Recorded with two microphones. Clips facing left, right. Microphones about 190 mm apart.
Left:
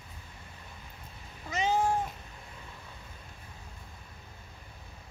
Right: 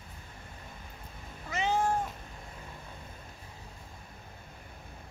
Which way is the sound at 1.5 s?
20° left (ahead or behind).